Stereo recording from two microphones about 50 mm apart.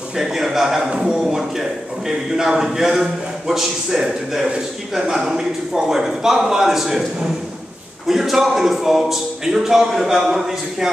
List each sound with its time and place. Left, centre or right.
0.1 s a man's voice: centre
1.2 s a man's voice: centre
8.1 s a man's voice: centre